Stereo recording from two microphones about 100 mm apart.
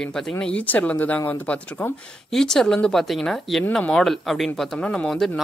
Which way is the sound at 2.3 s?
5° left (ahead or behind).